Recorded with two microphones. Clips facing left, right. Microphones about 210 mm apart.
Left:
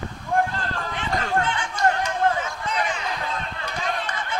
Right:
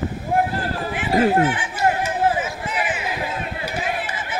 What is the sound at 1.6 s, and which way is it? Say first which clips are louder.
Chatter: right 2 dB; 5° right (ahead or behind).